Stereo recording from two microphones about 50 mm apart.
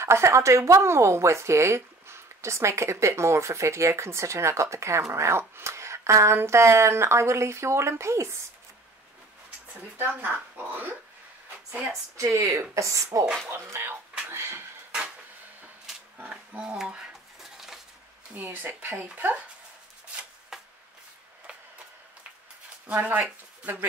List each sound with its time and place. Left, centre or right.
0.0 s speech: right
5.6 s a sound: right
6.3 s speech: right
9.9 s speech: right
12.2 s speech: right
12.7 s speech: right
13.5 s speech: right
14.3 s a sound: right
16.3 s a sound: right
16.7 s dishes: centre
18.3 s speech: right
22.9 s speech: right